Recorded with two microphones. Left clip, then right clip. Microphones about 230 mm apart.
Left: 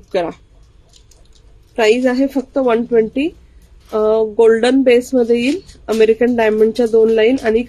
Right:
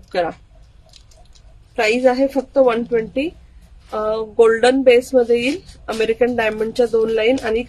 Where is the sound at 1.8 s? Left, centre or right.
Centre.